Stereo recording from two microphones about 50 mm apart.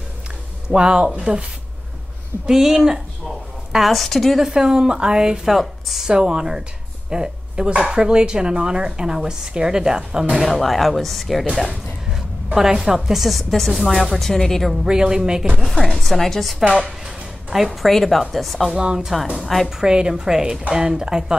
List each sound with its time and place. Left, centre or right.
0.7 s a woman's voice: centre
2.4 s a woman's voice: centre
5.5 s speech: centre
6.0 s a woman's voice: centre
10.3 s speech: centre
12.5 s speech: centre
14.9 s a woman's voice: centre
15.6 s speech: centre
16.7 s a sound: centre
17.6 s speech: centre
18.7 s a woman's voice: centre
19.4 s speech: centre
19.8 s a woman's voice: centre